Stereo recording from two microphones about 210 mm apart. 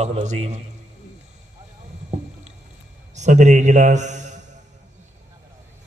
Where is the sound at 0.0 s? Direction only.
35° right (ahead or behind).